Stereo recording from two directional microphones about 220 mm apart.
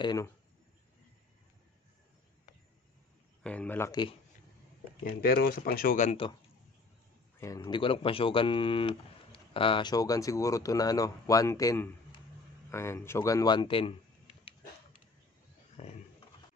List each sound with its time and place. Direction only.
0.0 s speech: 20° left (ahead or behind)
3.4 s speech: 5° left (ahead or behind)
5.0 s speech: 40° left (ahead or behind)
7.3 s speech: 15° left (ahead or behind)
12.7 s a sound: 10° left (ahead or behind)
15.8 s speech: 30° left (ahead or behind)